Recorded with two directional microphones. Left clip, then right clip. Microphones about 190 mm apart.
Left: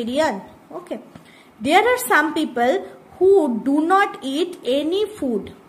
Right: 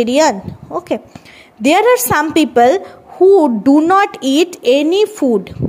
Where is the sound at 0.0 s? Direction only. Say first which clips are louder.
Right 9 dB; 45° right (ahead or behind).